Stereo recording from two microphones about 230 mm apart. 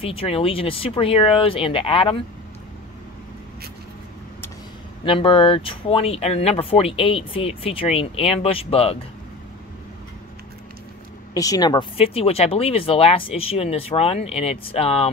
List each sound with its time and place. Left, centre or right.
0.0 s speech: left
5.0 s speech: left
11.3 s speech: centre